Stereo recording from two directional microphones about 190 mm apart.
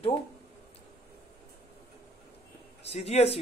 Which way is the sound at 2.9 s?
35° left (ahead or behind).